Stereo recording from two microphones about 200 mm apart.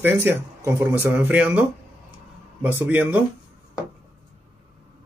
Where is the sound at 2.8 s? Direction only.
10° right (ahead or behind).